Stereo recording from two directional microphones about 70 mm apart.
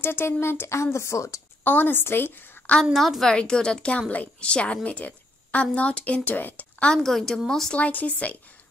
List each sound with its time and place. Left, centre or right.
0.0 s a woman's voice: left
1.6 s a woman's voice: left
2.7 s a woman's voice: centre; by 6.9 s left
6.9 s speech: centre
7.8 s a woman's voice: left